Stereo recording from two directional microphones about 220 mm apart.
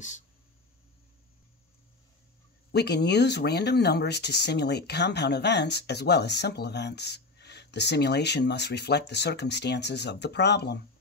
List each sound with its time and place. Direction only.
2.7 s speech: 50° left (ahead or behind)